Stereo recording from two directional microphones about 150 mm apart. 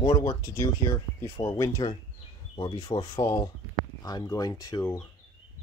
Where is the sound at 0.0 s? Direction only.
25° left (ahead or behind).